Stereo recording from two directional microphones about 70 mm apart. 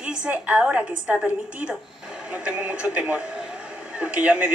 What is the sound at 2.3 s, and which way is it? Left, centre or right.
Speech, centre.